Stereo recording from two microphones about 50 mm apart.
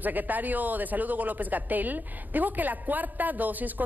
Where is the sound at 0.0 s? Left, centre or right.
Right.